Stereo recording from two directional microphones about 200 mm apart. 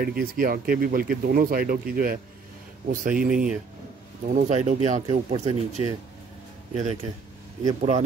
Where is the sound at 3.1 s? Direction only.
5° right (ahead or behind).